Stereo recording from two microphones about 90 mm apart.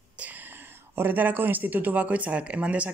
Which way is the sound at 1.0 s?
20° right (ahead or behind).